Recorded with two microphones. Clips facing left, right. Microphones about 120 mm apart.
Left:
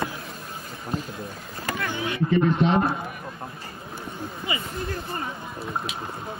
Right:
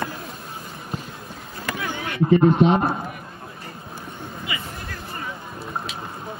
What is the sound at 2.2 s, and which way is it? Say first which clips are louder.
Speech: right 6 dB; 35° right (ahead or behind).